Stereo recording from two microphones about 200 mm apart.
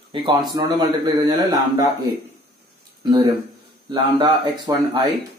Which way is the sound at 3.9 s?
20° right (ahead or behind).